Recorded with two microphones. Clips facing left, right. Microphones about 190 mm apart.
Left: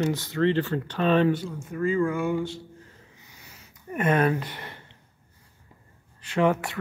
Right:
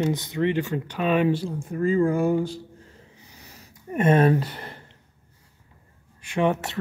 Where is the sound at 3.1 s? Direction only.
35° right (ahead or behind).